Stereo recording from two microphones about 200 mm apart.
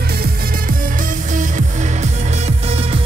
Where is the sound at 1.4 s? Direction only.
40° right (ahead or behind).